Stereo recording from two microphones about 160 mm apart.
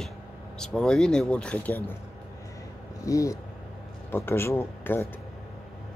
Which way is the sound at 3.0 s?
20° left (ahead or behind).